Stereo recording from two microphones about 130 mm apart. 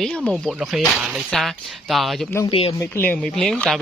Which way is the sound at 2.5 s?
45° left (ahead or behind).